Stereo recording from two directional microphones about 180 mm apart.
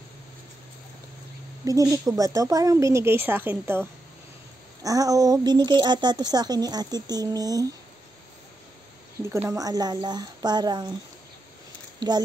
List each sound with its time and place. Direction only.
1.6 s a woman's voice: 20° right (ahead or behind)
9.2 s speech: 15° right (ahead or behind)
12.0 s speech: 25° right (ahead or behind)